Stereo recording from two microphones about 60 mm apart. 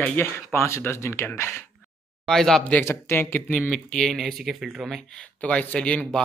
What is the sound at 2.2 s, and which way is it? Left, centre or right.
Speech, centre.